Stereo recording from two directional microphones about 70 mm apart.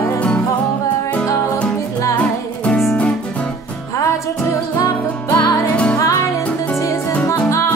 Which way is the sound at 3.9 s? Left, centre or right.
Left.